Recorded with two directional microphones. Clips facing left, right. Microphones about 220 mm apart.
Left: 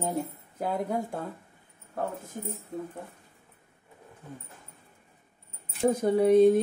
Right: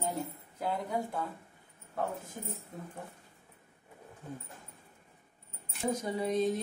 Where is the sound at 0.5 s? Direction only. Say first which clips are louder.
Left 4 dB; 50° left (ahead or behind).